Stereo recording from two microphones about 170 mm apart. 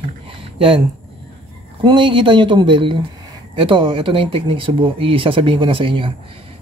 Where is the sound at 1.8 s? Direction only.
30° right (ahead or behind).